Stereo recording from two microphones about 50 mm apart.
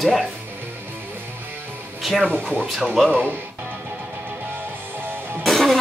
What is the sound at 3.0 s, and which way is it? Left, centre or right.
Speech, centre.